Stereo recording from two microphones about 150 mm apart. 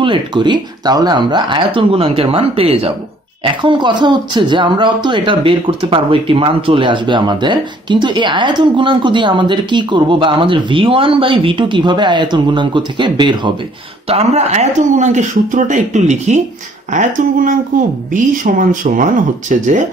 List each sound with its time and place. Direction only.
0.0 s speech: 35° right (ahead or behind)
3.6 s speech: 30° right (ahead or behind)
14.0 s speech: 45° right (ahead or behind)